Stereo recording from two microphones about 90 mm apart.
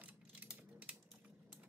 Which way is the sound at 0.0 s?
15° right (ahead or behind).